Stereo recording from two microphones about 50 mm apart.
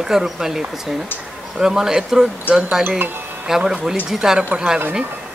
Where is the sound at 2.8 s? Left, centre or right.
Right.